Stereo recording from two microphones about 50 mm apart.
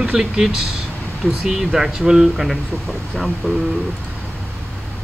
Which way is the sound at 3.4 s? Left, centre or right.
Right.